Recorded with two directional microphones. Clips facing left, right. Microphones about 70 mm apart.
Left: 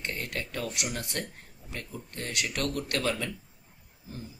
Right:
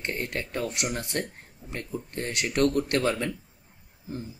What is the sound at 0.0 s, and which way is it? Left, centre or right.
Speech, right.